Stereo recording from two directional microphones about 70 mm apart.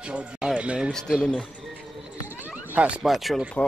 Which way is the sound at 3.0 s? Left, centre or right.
Centre.